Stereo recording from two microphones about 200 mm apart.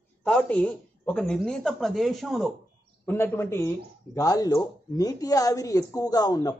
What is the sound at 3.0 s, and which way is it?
Speech, 10° left (ahead or behind).